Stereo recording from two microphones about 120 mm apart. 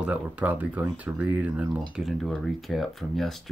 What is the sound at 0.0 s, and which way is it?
Speech, 10° right (ahead or behind).